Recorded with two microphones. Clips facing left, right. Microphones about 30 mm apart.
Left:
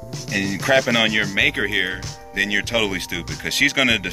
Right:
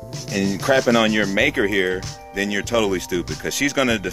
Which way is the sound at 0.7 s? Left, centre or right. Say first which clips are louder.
Left 1 dB; left.